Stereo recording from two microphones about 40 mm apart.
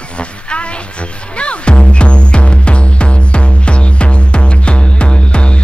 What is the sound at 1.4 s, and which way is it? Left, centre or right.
Music, left.